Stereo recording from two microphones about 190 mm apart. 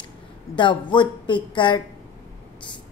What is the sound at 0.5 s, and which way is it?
A woman's voice, 25° left (ahead or behind).